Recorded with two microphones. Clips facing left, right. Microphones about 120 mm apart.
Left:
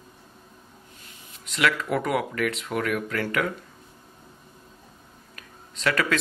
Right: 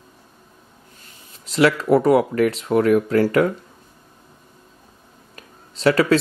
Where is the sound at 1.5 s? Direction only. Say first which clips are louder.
Right 9 dB; 35° right (ahead or behind).